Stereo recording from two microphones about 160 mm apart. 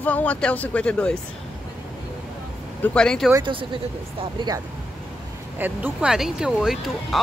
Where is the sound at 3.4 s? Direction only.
30° right (ahead or behind).